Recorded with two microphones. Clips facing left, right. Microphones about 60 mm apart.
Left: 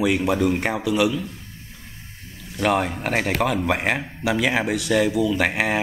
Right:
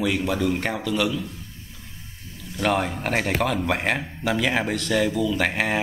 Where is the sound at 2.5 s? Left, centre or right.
Centre.